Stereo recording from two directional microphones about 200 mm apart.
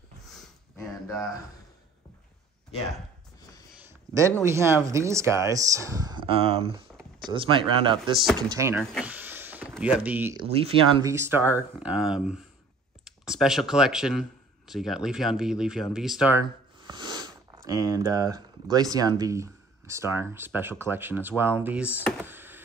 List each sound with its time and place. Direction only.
4.4 s speech: 15° right (ahead or behind)
9.0 s power windows: 10° right (ahead or behind)
10.3 s speech: 30° right (ahead or behind)
11.1 s speech: 10° right (ahead or behind)
16.8 s speech: 20° right (ahead or behind)
22.2 s a sound: 10° right (ahead or behind)